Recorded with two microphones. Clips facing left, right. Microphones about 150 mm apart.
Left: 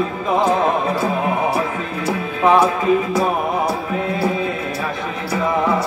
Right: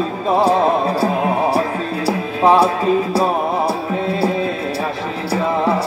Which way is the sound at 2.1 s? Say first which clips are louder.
Right 2 dB; 35° right (ahead or behind).